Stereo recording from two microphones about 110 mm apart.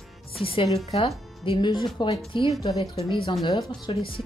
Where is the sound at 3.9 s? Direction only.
60° left (ahead or behind).